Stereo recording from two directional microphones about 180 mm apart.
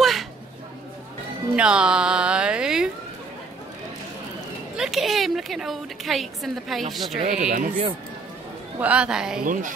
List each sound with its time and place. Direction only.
0.0 s a sound: centre (ahead or behind)
1.5 s music: 5° right (ahead or behind)
4.7 s a woman's voice: centre (ahead or behind)
7.2 s speech: 45° right (ahead or behind)
8.7 s a woman's voice: 5° right (ahead or behind)
9.4 s speech: 50° right (ahead or behind)